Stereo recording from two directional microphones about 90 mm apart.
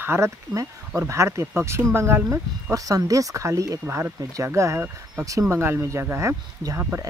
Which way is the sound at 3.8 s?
25° right (ahead or behind).